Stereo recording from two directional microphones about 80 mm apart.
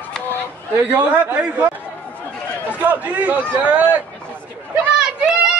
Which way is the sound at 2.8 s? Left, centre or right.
Right.